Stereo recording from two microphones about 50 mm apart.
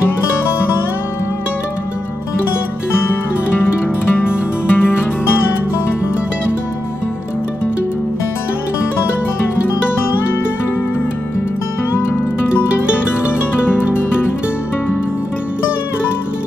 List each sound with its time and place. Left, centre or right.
4.1 s music: left
11.9 s music: left